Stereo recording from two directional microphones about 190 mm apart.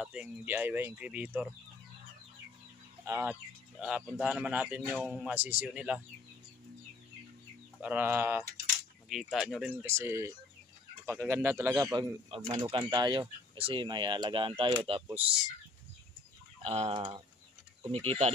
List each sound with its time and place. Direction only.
0.0 s a man's voice: 5° right (ahead or behind)
3.1 s a man's voice: 10° right (ahead or behind)
7.8 s a man's voice: 10° right (ahead or behind)
9.8 s a man's voice: 15° right (ahead or behind)
16.6 s speech: 30° right (ahead or behind)